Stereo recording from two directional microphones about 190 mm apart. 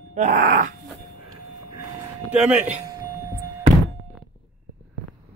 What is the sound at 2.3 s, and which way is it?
Speech, 5° right (ahead or behind).